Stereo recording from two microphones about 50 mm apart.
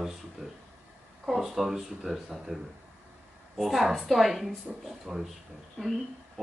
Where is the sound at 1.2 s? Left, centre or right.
Centre.